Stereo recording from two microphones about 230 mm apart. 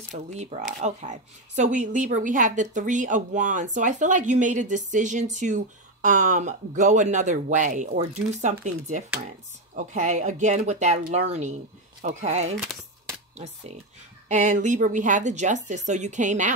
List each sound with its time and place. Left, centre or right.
0.1 s speech: right
14.3 s speech: right